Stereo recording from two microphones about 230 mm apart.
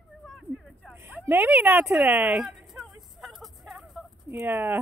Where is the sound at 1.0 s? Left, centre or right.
Centre.